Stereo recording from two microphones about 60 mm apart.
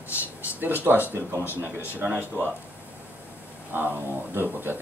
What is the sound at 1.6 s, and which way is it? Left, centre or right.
Speech, right.